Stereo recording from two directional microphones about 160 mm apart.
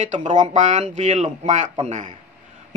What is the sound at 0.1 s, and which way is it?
A man's voice, 50° right (ahead or behind).